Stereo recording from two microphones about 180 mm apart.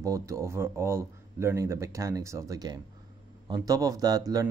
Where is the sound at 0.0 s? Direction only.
15° right (ahead or behind).